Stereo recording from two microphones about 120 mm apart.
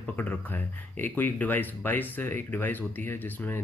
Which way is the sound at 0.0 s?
15° left (ahead or behind).